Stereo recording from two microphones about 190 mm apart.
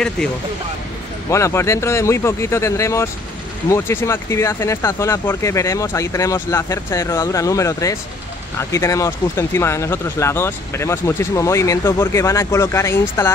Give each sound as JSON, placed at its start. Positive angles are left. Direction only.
{"t": 1.3, "sound": "speech", "side_deg": 15}